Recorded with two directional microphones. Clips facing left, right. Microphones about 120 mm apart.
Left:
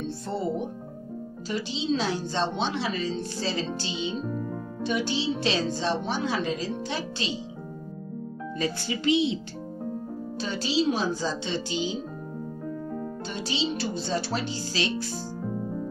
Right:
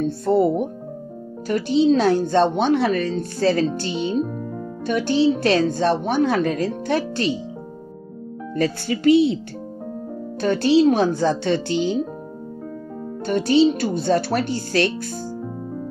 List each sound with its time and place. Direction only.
0.0 s a woman's voice: 55° right (ahead or behind)
8.7 s a woman's voice: 55° right (ahead or behind)
9.1 s speech: 20° left (ahead or behind)
10.4 s speech: 60° right (ahead or behind)
13.2 s speech: 55° right (ahead or behind)